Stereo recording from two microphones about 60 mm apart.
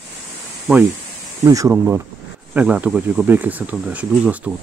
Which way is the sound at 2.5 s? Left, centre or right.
Centre.